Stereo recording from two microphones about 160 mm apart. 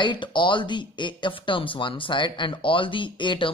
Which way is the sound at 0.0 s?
30° left (ahead or behind).